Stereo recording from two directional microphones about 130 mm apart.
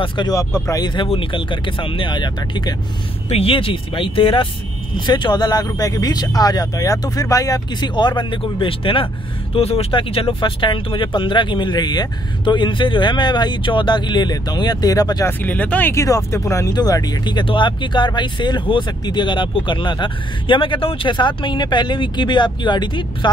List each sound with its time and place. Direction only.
0.0 s speech: 40° left (ahead or behind)
3.3 s speech: 50° left (ahead or behind); by 15.3 s 30° left (ahead or behind)
15.4 s speech: 10° left (ahead or behind)
15.9 s speech: 25° left (ahead or behind)